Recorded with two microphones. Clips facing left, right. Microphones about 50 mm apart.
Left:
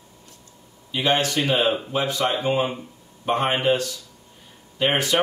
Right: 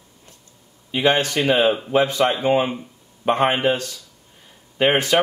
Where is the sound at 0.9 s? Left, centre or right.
Right.